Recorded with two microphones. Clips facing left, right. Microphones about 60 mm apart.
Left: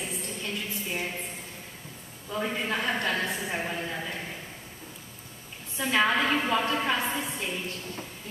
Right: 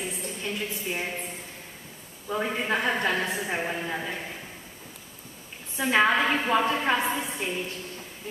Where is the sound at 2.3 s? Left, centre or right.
Centre.